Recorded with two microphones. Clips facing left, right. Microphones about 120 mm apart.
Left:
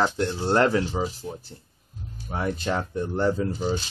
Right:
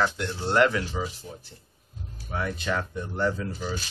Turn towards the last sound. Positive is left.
turn(degrees=25)  # may be behind; listen again after turning